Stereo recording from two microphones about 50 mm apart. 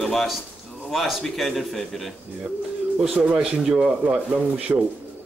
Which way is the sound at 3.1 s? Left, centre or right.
Right.